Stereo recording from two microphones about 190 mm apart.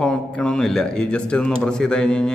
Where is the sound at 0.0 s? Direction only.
5° left (ahead or behind).